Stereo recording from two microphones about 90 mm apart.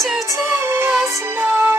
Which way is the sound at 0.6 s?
25° right (ahead or behind).